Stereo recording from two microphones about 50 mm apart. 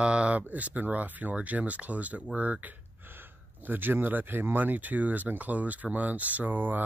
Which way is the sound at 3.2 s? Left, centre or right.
Right.